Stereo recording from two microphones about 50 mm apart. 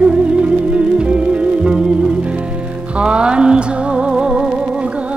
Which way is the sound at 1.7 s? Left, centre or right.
Centre.